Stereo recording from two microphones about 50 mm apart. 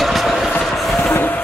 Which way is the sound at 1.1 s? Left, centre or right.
Left.